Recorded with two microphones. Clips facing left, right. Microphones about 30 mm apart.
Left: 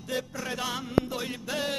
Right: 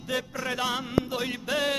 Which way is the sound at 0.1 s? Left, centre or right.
Right.